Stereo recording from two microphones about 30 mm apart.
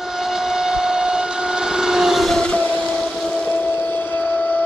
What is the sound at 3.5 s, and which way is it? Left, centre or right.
Boat, left.